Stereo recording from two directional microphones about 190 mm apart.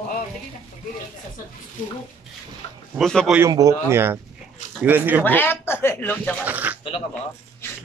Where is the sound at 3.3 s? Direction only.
15° right (ahead or behind).